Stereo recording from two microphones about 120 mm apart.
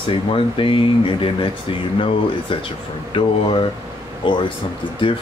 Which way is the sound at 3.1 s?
50° left (ahead or behind).